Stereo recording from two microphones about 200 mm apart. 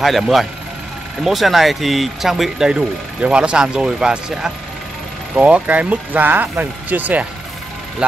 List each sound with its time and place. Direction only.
0.0 s speech: centre (ahead or behind)